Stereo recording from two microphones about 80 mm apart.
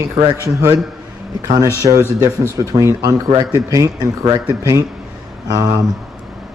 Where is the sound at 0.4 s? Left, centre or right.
Right.